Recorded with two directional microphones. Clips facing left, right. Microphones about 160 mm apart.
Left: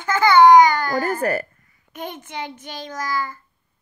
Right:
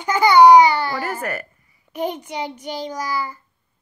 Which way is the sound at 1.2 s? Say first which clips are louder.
Left 5 dB; 35° left (ahead or behind).